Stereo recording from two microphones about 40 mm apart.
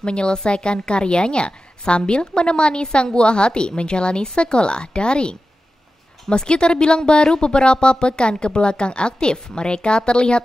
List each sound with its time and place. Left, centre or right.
0.0 s a woman's voice: left